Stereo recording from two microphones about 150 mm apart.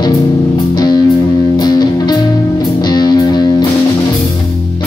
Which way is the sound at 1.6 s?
25° left (ahead or behind).